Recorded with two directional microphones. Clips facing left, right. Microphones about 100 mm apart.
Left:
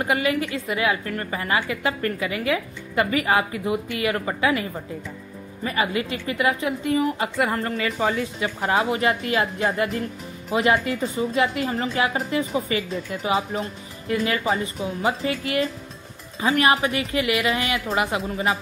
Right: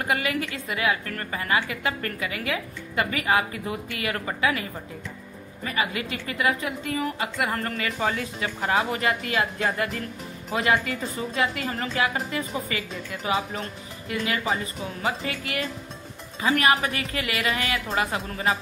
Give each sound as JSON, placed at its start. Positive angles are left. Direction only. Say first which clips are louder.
{"t": 0.0, "sound": "a woman's voice", "louder": "left 4 dB", "side_deg": 25}